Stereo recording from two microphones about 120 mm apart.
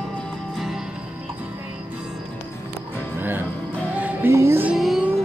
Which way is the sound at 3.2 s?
15° right (ahead or behind).